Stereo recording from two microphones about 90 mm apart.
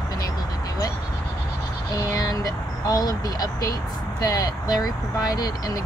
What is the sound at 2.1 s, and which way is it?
Vehicle, 45° left (ahead or behind).